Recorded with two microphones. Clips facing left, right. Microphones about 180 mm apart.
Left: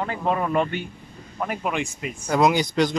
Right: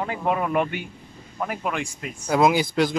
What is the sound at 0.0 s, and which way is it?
Speech, 10° right (ahead or behind).